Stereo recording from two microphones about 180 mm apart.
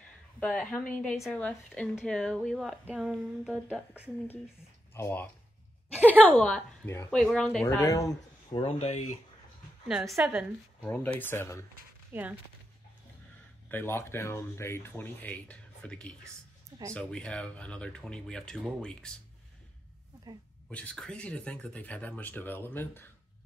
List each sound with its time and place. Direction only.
0.4 s speech: 5° left (ahead or behind)
4.9 s speech: 10° left (ahead or behind)
7.6 s speech: 15° left (ahead or behind); by 9.2 s 40° left (ahead or behind)
9.8 s speech: centre (ahead or behind)
10.9 s speech: 10° left (ahead or behind)
12.1 s speech: 10° right (ahead or behind)
13.7 s speech: 10° left (ahead or behind)
20.7 s speech: 5° left (ahead or behind)